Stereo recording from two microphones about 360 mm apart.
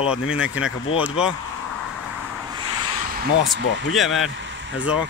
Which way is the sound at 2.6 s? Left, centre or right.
Centre.